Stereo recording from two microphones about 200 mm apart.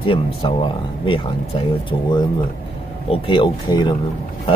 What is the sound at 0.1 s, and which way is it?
Speech, 25° left (ahead or behind).